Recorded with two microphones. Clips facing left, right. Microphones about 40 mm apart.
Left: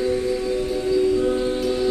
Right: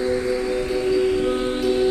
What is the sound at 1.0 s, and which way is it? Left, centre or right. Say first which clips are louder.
Music: left 1 dB; right.